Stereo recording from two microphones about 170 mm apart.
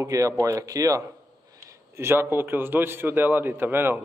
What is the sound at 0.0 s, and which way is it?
A man's voice, 20° right (ahead or behind).